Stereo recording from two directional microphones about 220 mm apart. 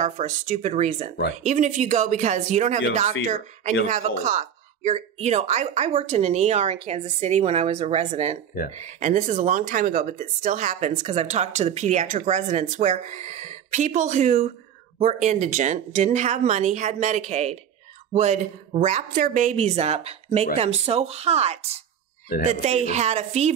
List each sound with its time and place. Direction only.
0.0 s speech: 30° right (ahead or behind)
3.8 s speech: 35° right (ahead or behind)